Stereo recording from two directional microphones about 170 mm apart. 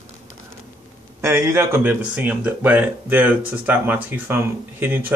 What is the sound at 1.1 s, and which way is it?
Speech, 15° right (ahead or behind).